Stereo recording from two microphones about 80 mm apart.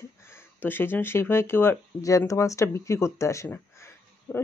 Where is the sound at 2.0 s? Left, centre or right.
Left.